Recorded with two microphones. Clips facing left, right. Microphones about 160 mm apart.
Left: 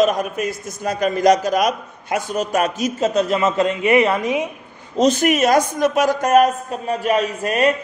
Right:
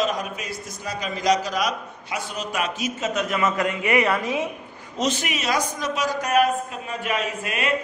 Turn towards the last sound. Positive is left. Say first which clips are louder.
# left 9 dB
turn(degrees=40)  # may be behind; listen again after turning